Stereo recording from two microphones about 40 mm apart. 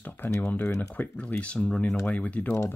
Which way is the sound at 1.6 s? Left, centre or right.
Centre.